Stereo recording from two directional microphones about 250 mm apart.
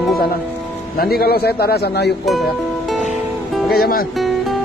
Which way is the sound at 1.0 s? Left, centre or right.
Left.